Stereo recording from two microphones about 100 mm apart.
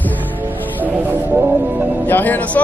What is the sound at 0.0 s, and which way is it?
Music, 15° left (ahead or behind).